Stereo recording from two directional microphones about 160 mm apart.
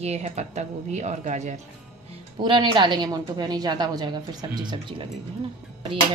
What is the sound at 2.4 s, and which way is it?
A woman's voice, 30° right (ahead or behind).